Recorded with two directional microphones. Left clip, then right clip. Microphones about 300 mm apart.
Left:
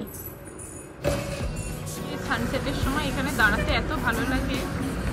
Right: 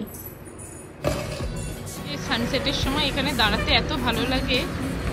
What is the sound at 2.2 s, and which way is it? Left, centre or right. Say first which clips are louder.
Speech: right 4 dB; centre.